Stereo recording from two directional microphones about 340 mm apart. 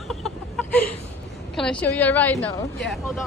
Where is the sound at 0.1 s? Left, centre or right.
Centre.